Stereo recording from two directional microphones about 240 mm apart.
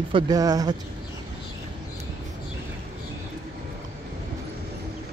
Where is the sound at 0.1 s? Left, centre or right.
Centre.